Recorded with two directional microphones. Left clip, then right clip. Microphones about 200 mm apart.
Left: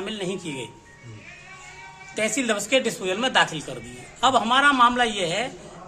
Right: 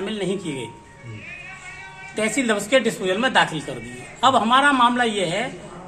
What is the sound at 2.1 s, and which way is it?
A man's voice, 25° left (ahead or behind).